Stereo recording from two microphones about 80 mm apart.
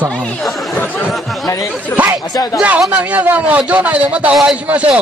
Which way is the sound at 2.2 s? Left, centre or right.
Left.